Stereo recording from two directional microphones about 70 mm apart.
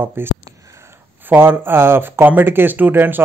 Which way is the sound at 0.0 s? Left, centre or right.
Right.